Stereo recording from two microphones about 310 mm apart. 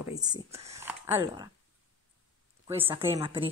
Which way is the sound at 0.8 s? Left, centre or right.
Centre.